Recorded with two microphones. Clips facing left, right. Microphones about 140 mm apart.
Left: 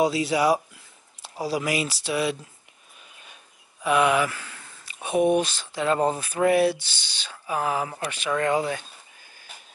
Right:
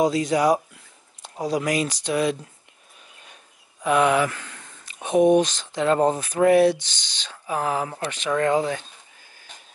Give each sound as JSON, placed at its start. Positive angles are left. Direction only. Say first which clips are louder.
{"t": 0.0, "sound": "speech", "louder": "right 2 dB", "side_deg": 5}
{"t": 3.8, "sound": "a sound", "louder": "right 2 dB", "side_deg": 10}
{"t": 5.0, "sound": "speech", "louder": "right 4 dB", "side_deg": 10}